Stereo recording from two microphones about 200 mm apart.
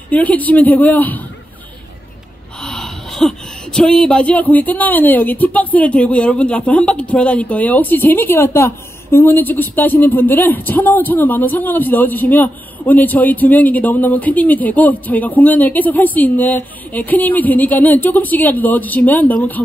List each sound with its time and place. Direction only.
0.1 s speech: 5° left (ahead or behind)
2.6 s speech: centre (ahead or behind)